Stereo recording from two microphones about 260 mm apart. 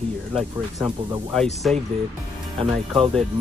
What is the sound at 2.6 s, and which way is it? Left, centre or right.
Speech, right.